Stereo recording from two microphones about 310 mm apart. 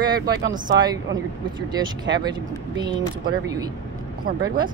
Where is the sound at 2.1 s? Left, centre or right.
Right.